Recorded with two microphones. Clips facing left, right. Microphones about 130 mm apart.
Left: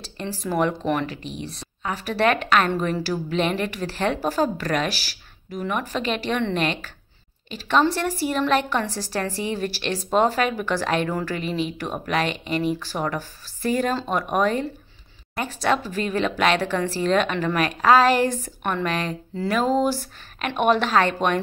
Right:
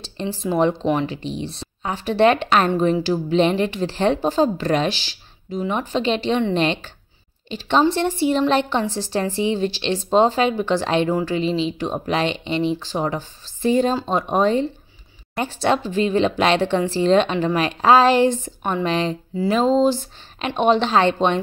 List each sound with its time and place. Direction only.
0.0 s a woman's voice: 25° right (ahead or behind)
11.1 s speech: 15° right (ahead or behind)
11.8 s a woman's voice: 25° right (ahead or behind)
18.9 s a woman's voice: 25° right (ahead or behind)